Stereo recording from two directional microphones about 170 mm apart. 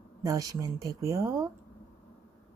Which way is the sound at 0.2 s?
20° right (ahead or behind).